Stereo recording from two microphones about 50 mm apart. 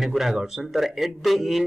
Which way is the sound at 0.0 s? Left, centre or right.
Centre.